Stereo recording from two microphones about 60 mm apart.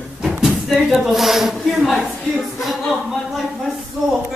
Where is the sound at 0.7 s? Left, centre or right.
Centre.